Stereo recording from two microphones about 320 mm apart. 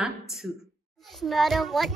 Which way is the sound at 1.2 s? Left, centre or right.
Centre.